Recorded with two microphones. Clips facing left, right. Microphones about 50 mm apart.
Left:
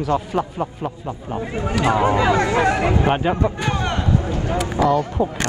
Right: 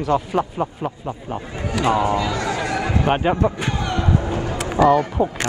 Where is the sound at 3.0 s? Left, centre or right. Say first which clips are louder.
Right 1 dB; centre.